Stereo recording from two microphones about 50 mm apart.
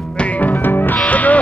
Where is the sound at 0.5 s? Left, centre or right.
Left.